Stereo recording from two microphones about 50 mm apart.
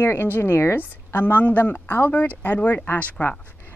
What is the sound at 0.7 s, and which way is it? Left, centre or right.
A woman's voice, left.